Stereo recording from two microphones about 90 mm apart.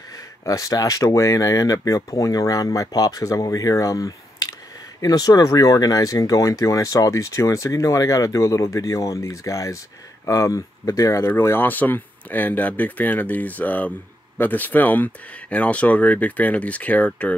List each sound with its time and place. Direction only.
0.5 s speech: 40° left (ahead or behind); by 17.3 s 15° left (ahead or behind)